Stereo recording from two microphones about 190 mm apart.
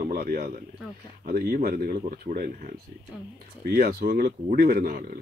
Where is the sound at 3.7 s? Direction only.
50° right (ahead or behind).